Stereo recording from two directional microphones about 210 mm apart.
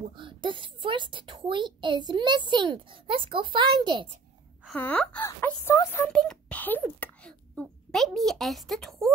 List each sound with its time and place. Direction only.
0.1 s a child's voice: 25° right (ahead or behind)
4.6 s speech: 5° left (ahead or behind)